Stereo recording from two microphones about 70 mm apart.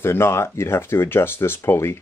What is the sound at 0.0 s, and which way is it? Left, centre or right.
Speech, left.